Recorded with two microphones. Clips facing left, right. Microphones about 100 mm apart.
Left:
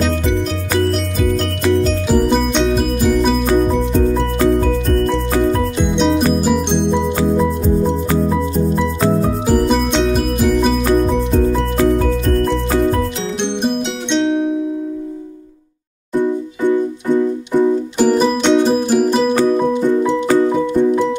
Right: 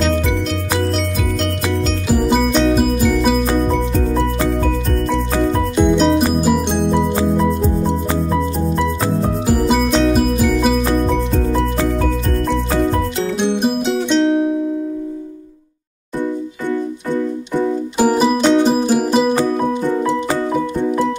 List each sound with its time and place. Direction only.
2.0 s music: centre (ahead or behind)
4.8 s music: centre (ahead or behind)
9.5 s music: centre (ahead or behind)
13.4 s music: 5° right (ahead or behind)
16.2 s music: 15° left (ahead or behind)
17.9 s music: 5° right (ahead or behind)